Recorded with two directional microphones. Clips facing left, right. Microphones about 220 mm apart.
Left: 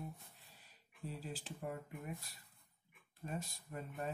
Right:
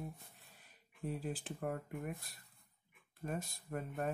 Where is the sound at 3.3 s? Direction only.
55° right (ahead or behind).